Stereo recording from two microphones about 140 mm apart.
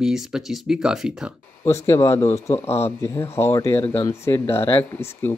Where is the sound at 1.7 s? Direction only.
20° left (ahead or behind).